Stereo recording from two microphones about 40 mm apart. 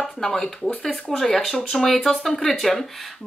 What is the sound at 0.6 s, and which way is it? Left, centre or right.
Speech, centre.